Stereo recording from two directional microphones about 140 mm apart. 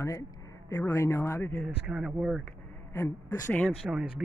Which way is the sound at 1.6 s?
5° right (ahead or behind).